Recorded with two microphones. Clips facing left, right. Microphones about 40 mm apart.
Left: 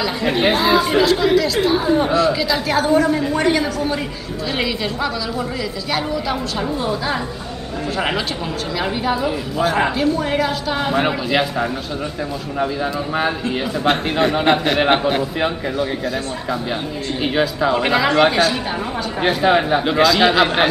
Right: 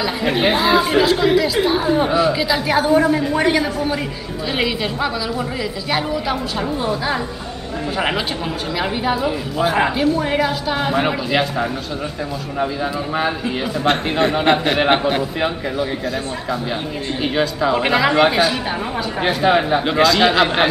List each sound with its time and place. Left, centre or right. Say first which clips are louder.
0.0 s speech: even; centre
9.0 s a woman's voice: even; centre
13.8 s a woman's voice: even; centre
17.2 s a woman's voice: left 1 dB; centre